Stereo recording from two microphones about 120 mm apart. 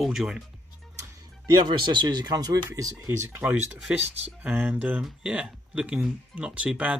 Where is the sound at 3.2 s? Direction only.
15° right (ahead or behind).